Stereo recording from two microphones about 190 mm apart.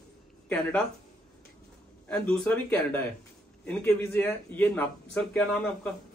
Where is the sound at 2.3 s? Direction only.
5° left (ahead or behind).